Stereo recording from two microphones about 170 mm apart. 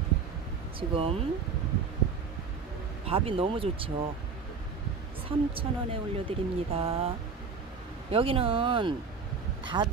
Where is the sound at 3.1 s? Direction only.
35° right (ahead or behind).